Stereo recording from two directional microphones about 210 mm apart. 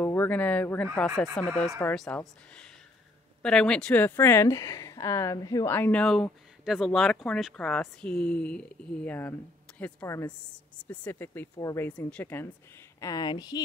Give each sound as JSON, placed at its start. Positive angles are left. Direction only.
{"t": 0.0, "sound": "a woman's voice", "side_deg": 10}